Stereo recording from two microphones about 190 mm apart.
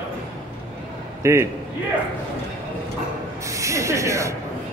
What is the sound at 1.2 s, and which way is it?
Speech, 15° right (ahead or behind).